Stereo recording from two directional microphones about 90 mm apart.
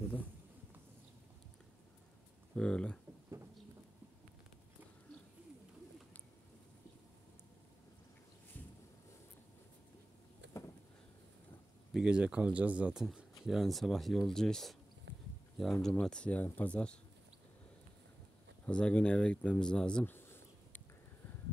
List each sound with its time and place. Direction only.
2.5 s speech: 10° left (ahead or behind)
8.5 s a sound: 20° left (ahead or behind)
11.9 s a man's voice: 10° right (ahead or behind); by 17.0 s 10° left (ahead or behind)
18.7 s speech: 15° left (ahead or behind)